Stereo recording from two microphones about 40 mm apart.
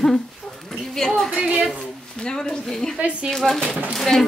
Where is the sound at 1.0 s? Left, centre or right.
Centre.